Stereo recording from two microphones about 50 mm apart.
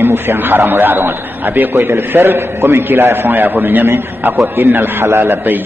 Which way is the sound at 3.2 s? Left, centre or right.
Right.